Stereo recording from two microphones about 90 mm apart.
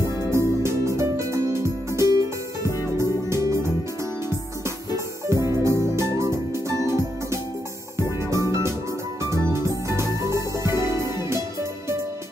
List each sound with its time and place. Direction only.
0.3 s music: 30° right (ahead or behind)
4.9 s music: 35° right (ahead or behind)